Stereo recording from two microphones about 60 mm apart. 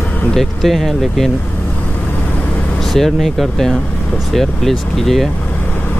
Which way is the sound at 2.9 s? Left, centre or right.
Centre.